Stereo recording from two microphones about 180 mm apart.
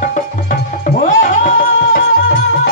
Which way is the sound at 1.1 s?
50° left (ahead or behind).